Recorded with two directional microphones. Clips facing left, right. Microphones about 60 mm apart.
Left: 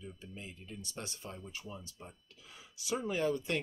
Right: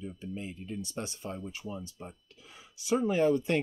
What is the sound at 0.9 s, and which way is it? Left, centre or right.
Speech, right.